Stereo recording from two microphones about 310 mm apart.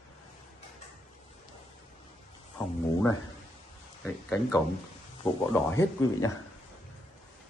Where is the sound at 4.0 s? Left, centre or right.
Centre.